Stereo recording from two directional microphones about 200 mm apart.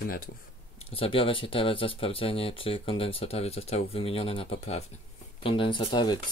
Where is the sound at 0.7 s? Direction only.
30° left (ahead or behind).